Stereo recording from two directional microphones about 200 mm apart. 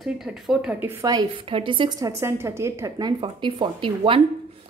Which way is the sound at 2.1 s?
15° right (ahead or behind).